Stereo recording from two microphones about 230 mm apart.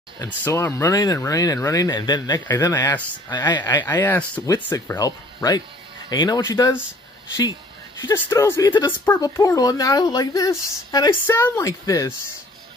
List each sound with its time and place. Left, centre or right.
0.4 s speech: centre
8.0 s speech: centre